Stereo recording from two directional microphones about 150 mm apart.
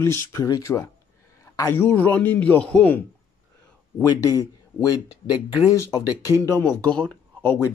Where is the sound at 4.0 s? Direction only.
25° left (ahead or behind).